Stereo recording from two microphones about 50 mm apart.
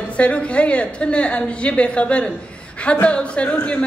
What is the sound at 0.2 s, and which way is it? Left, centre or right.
A woman's voice, left.